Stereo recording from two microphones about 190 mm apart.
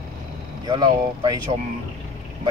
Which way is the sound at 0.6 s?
25° right (ahead or behind).